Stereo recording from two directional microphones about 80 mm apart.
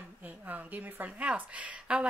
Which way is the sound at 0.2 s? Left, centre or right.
Right.